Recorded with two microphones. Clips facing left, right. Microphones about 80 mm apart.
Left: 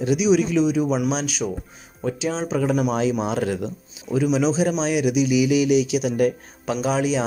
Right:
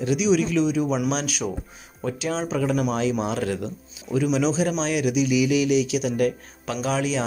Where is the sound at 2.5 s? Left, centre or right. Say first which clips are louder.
Left 3 dB; centre.